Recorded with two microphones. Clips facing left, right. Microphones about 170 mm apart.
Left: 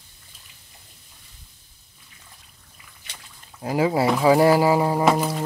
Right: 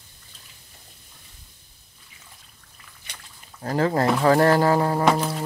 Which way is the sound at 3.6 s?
10° left (ahead or behind).